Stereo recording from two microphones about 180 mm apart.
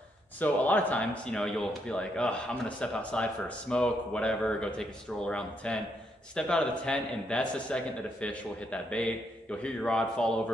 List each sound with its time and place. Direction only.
0.4 s speech: 10° left (ahead or behind)